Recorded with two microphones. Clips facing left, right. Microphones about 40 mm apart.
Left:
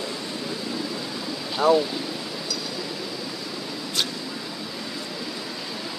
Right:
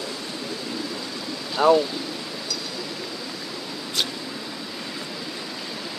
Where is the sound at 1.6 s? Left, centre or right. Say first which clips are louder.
Right 2 dB; right.